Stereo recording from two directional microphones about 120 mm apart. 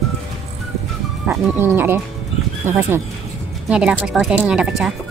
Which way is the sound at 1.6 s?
20° right (ahead or behind).